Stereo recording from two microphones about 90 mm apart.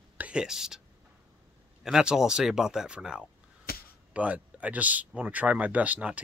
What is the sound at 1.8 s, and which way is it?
Speech, 5° right (ahead or behind).